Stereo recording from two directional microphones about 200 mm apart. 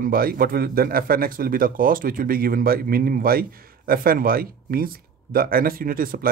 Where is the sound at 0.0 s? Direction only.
45° right (ahead or behind).